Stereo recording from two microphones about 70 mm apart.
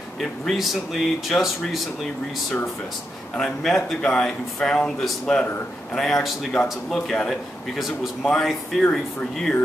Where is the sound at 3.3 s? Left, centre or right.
Centre.